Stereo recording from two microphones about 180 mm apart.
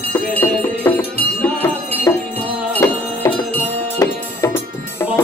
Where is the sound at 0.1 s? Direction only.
10° left (ahead or behind).